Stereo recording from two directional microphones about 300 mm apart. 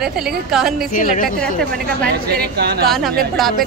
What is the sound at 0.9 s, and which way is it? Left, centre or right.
Speech, left.